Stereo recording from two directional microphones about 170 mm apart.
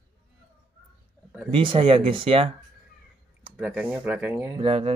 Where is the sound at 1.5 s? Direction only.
30° right (ahead or behind).